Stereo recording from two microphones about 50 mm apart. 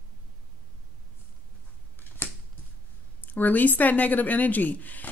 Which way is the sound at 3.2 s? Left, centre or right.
Left.